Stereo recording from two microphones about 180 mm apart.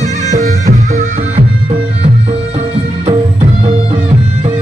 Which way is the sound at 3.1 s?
30° right (ahead or behind).